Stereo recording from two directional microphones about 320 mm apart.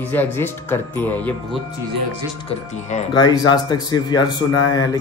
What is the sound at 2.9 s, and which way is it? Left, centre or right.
Speech, centre.